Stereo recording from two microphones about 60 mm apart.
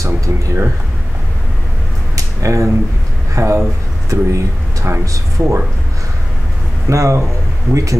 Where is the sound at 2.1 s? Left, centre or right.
Right.